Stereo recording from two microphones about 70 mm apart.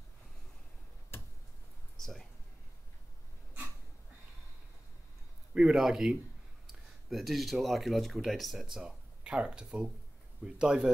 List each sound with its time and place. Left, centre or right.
1.1 s tick-tock: left
2.0 s a sound: centre
5.5 s speech: centre
8.7 s speech: centre